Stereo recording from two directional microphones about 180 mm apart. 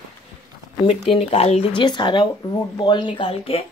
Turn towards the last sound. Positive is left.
turn(degrees=30)  # may be behind; listen again after turning